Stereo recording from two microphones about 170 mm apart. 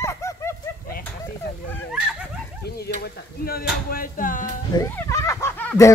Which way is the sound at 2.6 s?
70° left (ahead or behind).